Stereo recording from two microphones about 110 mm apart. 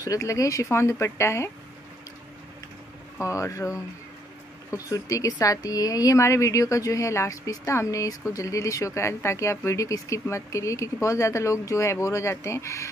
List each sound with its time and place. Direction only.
0.0 s speech: 30° left (ahead or behind)
3.2 s speech: 30° left (ahead or behind)